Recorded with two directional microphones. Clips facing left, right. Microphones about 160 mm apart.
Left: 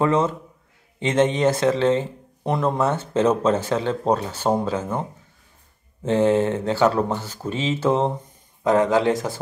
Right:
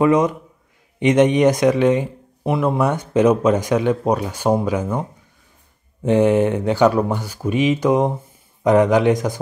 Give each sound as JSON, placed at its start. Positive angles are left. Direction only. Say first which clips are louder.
{"t": 0.0, "sound": "speech", "louder": "right 4 dB", "side_deg": -15}
{"t": 6.0, "sound": "speech", "louder": "right 3 dB", "side_deg": -15}